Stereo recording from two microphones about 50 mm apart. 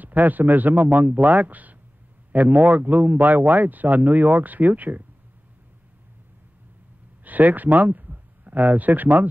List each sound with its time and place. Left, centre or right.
0.0 s speech: right
7.2 s speech: right